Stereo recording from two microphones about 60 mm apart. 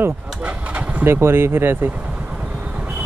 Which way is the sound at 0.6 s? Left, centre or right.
Right.